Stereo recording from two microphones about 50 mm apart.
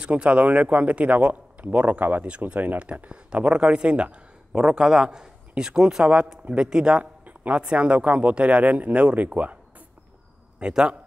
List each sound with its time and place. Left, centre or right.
0.0 s a man's voice: right
7.2 s a sound: right
7.7 s a man's voice: right
10.6 s speech: centre